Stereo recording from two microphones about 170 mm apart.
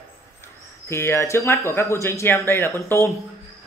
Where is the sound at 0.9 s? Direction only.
15° left (ahead or behind).